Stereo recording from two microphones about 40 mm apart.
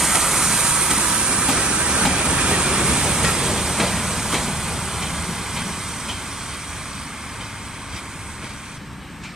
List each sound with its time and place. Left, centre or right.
0.0 s vehicle: centre
2.1 s train: right